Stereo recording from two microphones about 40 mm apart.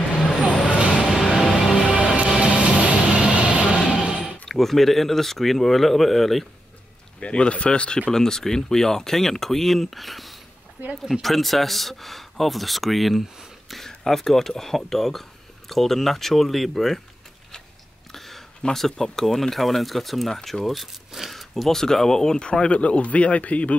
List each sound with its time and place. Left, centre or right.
0.7 s vehicle: right
1.0 s music: centre
1.9 s music: right
2.3 s vehicle: right
4.5 s speech: centre
7.2 s speech: left
8.1 s speech: centre
18.1 s a sound: centre
18.7 s speech: centre
21.3 s a sound: centre
21.7 s speech: centre; by 23.7 s left